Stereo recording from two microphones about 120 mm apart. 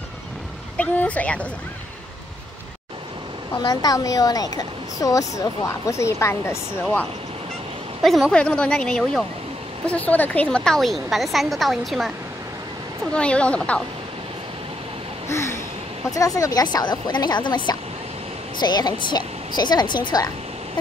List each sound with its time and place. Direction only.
0.7 s a sound: 10° left (ahead or behind)
3.6 s speech: 30° left (ahead or behind)
8.0 s a woman's voice: centre (ahead or behind)
13.1 s a woman's voice: 10° left (ahead or behind)
15.2 s a sound: 25° left (ahead or behind)
16.1 s speech: 30° left (ahead or behind)